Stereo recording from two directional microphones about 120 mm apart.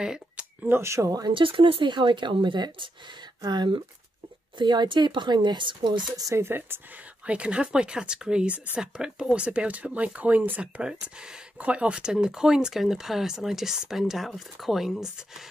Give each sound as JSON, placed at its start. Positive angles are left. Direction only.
{"t": 0.0, "sound": "a sound", "side_deg": -5}
{"t": 0.7, "sound": "speech", "side_deg": -20}
{"t": 1.3, "sound": "speech", "side_deg": -45}